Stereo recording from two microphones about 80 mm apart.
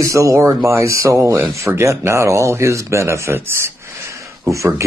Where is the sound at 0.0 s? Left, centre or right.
Right.